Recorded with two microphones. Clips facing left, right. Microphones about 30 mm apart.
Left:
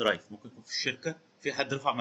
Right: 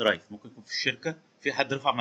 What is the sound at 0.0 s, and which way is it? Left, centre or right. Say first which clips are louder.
Speech: right 3 dB; centre.